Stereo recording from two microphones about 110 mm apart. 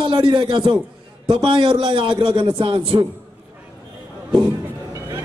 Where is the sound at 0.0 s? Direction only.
50° right (ahead or behind).